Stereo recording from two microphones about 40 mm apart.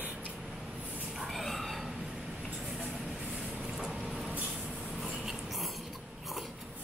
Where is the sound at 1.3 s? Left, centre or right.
Centre.